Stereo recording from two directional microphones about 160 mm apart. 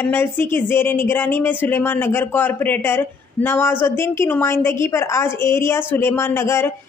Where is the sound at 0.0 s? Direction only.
15° left (ahead or behind).